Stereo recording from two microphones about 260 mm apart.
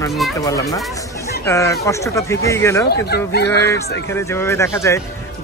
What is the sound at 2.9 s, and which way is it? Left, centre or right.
Speech, left.